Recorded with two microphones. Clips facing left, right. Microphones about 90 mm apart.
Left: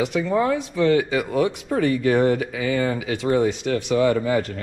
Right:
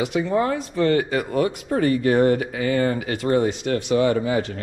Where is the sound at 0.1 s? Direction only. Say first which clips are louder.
Left 1 dB; 40° right (ahead or behind).